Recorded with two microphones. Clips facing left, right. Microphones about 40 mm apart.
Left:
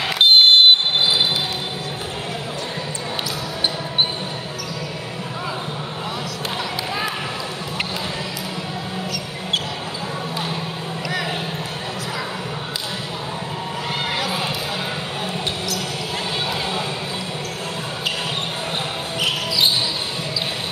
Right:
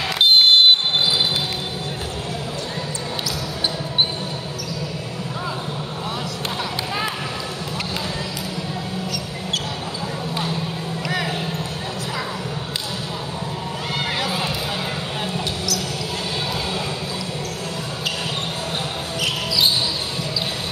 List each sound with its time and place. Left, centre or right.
0.0 s vehicle: centre
14.0 s a sound: centre
19.2 s basketball bounce: centre